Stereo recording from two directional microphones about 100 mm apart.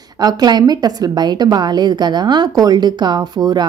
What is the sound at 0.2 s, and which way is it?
A woman's voice, 40° right (ahead or behind).